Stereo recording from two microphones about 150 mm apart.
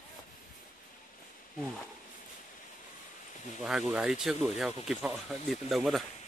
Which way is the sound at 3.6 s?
Centre (ahead or behind).